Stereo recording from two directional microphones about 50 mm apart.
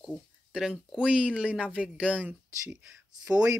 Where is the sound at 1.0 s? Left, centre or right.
Right.